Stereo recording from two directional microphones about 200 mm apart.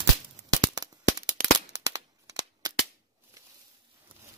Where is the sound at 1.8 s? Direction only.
20° right (ahead or behind).